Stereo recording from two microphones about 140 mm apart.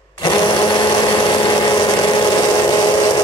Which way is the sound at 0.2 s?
30° left (ahead or behind).